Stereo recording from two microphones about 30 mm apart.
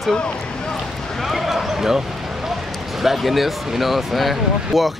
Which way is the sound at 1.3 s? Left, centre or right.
Centre.